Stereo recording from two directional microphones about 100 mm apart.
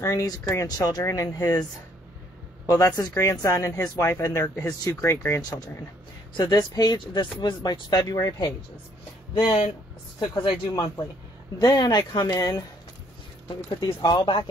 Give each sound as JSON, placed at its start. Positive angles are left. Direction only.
{"t": 0.0, "sound": "speech", "side_deg": 35}
{"t": 0.7, "sound": "speech", "side_deg": 40}
{"t": 6.3, "sound": "speech", "side_deg": 45}
{"t": 9.4, "sound": "speech", "side_deg": 65}
{"t": 10.3, "sound": "speech", "side_deg": 50}
{"t": 13.7, "sound": "speech", "side_deg": 50}